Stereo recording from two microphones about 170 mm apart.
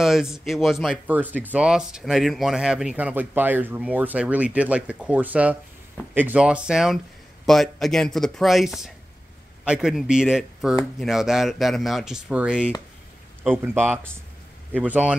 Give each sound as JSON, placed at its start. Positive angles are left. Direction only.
{"t": 0.0, "sound": "speech", "side_deg": 0}